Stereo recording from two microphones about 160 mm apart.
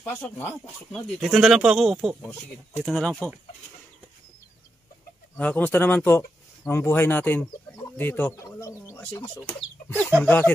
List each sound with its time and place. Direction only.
0.1 s speech: 10° left (ahead or behind)
5.4 s speech: 10° left (ahead or behind)